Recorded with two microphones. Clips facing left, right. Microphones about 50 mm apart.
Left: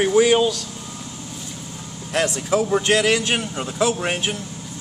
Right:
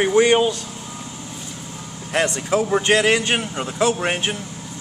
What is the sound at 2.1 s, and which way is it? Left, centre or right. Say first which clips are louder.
A man's voice: right 1 dB; centre.